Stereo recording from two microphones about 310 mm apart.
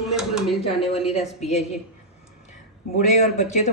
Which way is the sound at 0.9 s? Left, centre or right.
Centre.